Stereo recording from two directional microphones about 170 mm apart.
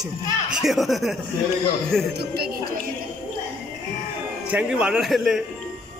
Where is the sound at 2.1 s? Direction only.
65° right (ahead or behind).